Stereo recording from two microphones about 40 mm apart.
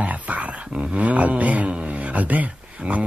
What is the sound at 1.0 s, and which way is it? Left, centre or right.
Speech, right.